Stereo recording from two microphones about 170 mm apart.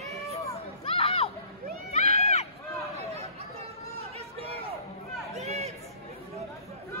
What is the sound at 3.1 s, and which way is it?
Chatter, 40° right (ahead or behind).